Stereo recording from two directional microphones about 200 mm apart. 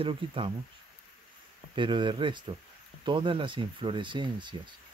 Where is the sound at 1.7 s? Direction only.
25° right (ahead or behind).